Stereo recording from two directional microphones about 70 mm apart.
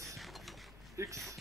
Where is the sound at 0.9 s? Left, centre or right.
Right.